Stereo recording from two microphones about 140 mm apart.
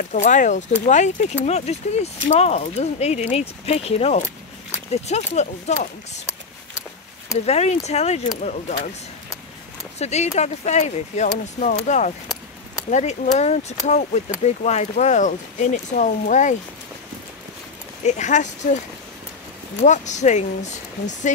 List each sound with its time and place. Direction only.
0.1 s speech: 65° left (ahead or behind)
7.4 s speech: 50° left (ahead or behind)
9.9 s speech: 50° left (ahead or behind)
18.0 s speech: 55° left (ahead or behind)
19.8 s speech: 60° left (ahead or behind)